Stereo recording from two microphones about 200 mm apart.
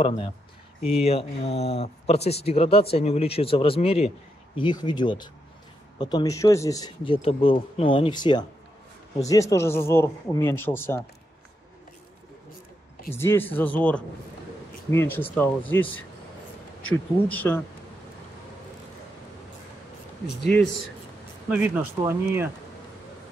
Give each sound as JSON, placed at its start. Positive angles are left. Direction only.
{"t": 0.9, "sound": "a man's voice", "side_deg": 30}
{"t": 7.2, "sound": "a man's voice", "side_deg": 30}
{"t": 13.1, "sound": "a man's voice", "side_deg": 10}
{"t": 17.3, "sound": "a man's voice", "side_deg": 10}
{"t": 21.5, "sound": "speech", "side_deg": -10}